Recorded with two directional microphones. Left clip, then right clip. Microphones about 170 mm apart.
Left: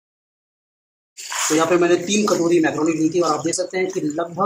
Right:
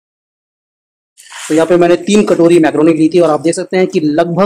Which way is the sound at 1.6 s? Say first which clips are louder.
Right 9 dB; 55° right (ahead or behind).